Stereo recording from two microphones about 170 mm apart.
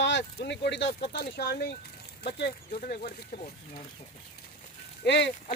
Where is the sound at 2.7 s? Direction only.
50° left (ahead or behind).